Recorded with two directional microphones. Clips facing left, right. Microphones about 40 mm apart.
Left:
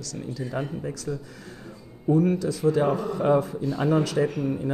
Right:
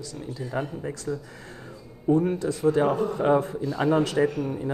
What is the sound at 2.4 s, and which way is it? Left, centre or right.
Speech, right.